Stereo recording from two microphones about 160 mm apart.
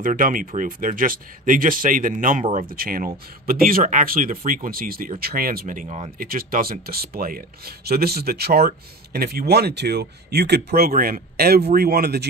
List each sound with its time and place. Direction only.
0.0 s speech: 60° right (ahead or behind)
2.5 s speech: 65° right (ahead or behind); by 6.0 s 50° right (ahead or behind)
6.1 s speech: 65° right (ahead or behind); by 10.9 s 85° right
10.9 s speech: 60° right (ahead or behind); by 12.3 s 80° right